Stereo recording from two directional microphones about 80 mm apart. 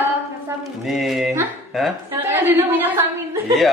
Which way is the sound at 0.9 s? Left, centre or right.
Centre.